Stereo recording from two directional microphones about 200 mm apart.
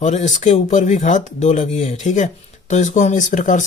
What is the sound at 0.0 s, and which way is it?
Speech, 35° left (ahead or behind).